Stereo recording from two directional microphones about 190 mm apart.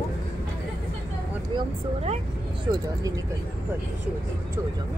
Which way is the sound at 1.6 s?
35° right (ahead or behind).